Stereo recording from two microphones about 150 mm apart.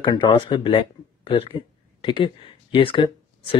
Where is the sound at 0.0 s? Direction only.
30° left (ahead or behind).